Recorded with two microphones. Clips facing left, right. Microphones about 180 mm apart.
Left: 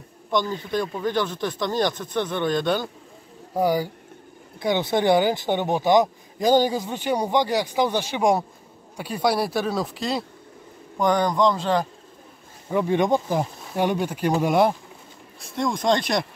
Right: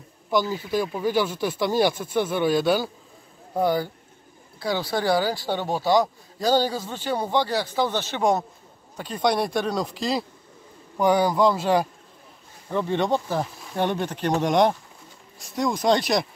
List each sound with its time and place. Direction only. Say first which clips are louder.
0.3 s speech: right 1 dB; 5° right (ahead or behind)
3.5 s speech: left 1 dB; 10° left (ahead or behind)
4.6 s speech: left 4 dB; 20° left (ahead or behind); by 11.9 s 10° right (ahead or behind)
12.6 s speech: left 3 dB; 10° left (ahead or behind)